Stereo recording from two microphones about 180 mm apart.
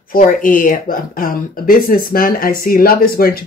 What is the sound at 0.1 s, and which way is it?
Speech, 50° left (ahead or behind).